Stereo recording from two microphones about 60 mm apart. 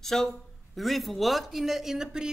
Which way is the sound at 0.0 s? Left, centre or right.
Centre.